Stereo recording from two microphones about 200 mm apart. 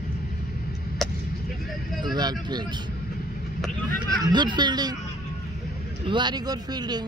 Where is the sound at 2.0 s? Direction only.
20° right (ahead or behind).